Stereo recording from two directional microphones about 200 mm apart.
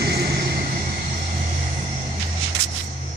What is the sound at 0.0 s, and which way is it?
Vehicle, 55° right (ahead or behind).